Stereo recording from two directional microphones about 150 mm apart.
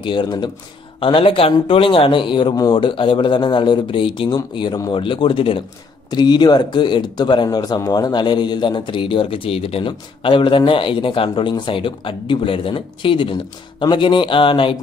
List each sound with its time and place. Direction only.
0.0 s speech: 30° left (ahead or behind)